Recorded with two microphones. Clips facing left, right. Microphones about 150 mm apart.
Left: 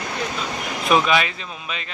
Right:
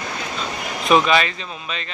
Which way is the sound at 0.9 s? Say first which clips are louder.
Right 2 dB; 5° left (ahead or behind).